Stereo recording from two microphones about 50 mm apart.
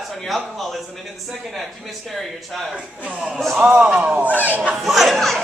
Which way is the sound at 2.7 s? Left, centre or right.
Right.